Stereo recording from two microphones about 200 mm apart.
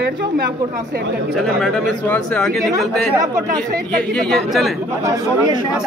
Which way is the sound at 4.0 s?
5° left (ahead or behind).